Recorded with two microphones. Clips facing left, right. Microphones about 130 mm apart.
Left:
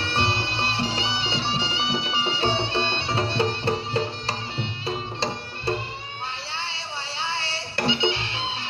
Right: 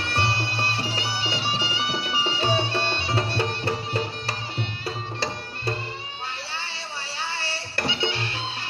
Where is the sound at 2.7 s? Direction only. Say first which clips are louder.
Even; 25° left (ahead or behind).